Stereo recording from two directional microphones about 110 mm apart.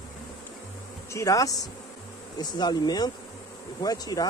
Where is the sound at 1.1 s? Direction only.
30° left (ahead or behind).